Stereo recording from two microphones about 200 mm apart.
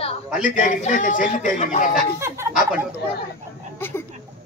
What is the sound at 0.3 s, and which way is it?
A man's voice, 40° left (ahead or behind).